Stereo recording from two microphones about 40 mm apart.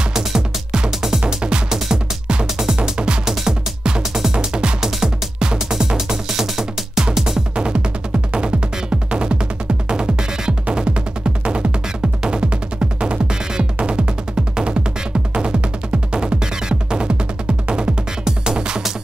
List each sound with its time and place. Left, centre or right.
0.1 s music: centre
1.2 s music: right; by 7.1 s centre
7.5 s music: right
16.1 s music: right